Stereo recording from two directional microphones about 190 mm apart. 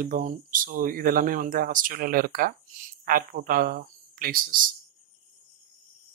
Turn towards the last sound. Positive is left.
turn(degrees=-45)  # may be behind; listen again after turning